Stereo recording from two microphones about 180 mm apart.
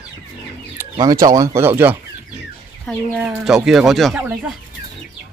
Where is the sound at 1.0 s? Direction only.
20° right (ahead or behind).